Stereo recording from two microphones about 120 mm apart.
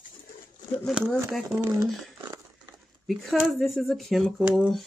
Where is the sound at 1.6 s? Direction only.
30° right (ahead or behind).